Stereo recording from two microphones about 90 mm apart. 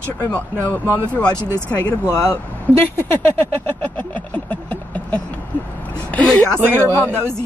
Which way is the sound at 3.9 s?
20° left (ahead or behind).